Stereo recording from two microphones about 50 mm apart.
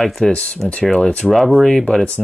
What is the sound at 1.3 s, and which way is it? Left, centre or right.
Speech, centre.